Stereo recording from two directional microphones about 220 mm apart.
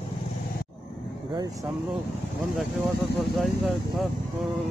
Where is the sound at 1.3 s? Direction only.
20° right (ahead or behind).